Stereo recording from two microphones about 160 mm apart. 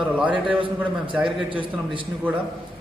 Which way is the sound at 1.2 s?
30° right (ahead or behind).